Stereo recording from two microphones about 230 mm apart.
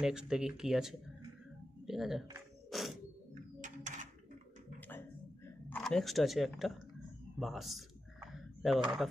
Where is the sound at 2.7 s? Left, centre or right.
Centre.